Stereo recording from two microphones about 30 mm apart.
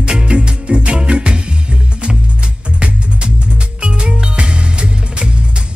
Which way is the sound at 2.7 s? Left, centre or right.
Right.